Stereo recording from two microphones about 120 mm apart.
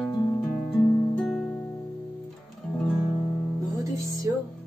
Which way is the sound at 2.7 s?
Centre (ahead or behind).